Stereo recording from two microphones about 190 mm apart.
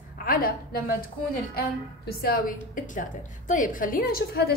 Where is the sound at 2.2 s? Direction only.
50° left (ahead or behind).